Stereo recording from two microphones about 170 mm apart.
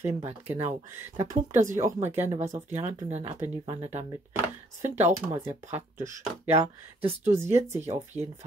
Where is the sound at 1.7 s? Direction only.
15° right (ahead or behind).